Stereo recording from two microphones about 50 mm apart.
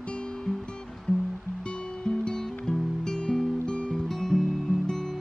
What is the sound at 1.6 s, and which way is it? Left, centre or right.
Music, centre.